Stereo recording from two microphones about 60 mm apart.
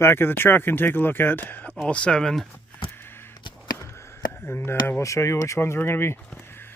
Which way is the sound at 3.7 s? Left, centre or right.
Left.